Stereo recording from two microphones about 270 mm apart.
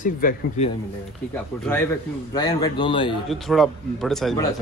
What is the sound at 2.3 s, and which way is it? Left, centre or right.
Speech, centre.